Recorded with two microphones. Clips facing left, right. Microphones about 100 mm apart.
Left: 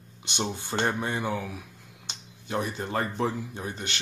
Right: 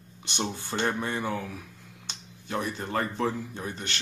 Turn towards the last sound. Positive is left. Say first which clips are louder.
# even
turn(degrees=15)  # may be behind; listen again after turning